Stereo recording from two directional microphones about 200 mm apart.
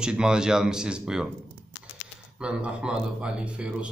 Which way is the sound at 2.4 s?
5° right (ahead or behind).